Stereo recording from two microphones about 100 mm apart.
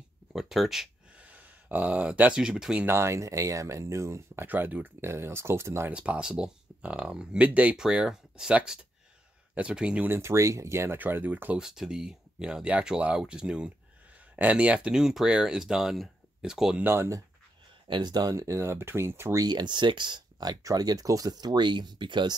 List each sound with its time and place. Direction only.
0.3 s a sound: 5° right (ahead or behind)
1.2 s speech: 15° right (ahead or behind)
2.9 s speech: 30° right (ahead or behind)
4.5 s speech: 15° right (ahead or behind)
5.9 s speech: 10° right (ahead or behind)
9.6 s speech: 10° right (ahead or behind)
10.0 s speech: 25° right (ahead or behind)
11.6 s speech: 5° right (ahead or behind)
16.8 s speech: 25° right (ahead or behind)
17.8 s speech: 50° right (ahead or behind); by 19.4 s 25° right (ahead or behind)
19.4 s speech: 45° right (ahead or behind)